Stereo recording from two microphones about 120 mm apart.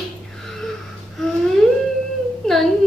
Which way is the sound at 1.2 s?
5° left (ahead or behind).